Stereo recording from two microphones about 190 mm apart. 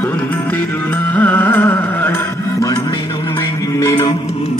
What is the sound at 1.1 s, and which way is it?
Carnatic music, 10° left (ahead or behind).